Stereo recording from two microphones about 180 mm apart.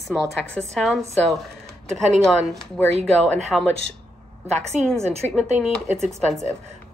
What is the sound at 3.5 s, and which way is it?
Speech, centre (ahead or behind).